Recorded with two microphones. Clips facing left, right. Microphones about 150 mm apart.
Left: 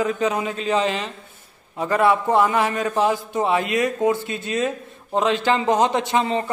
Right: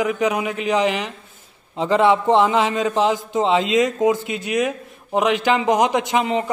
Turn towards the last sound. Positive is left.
turn(degrees=-15)  # may be behind; listen again after turning